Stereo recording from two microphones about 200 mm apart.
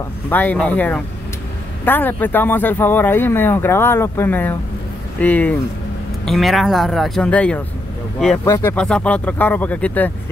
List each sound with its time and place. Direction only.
0.3 s speech: 10° left (ahead or behind)